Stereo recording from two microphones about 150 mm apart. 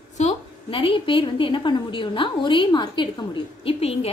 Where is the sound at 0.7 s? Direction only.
35° left (ahead or behind).